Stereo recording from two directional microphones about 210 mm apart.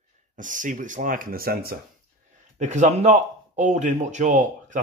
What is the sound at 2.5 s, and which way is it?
Speech, 35° right (ahead or behind).